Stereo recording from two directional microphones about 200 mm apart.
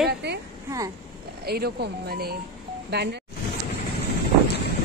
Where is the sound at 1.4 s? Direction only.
50° right (ahead or behind).